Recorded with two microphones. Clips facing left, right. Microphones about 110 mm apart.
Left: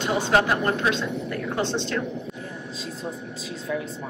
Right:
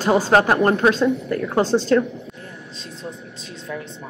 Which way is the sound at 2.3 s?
5° left (ahead or behind).